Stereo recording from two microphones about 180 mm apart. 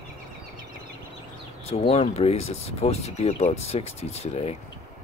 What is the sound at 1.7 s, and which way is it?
Speech, 35° left (ahead or behind).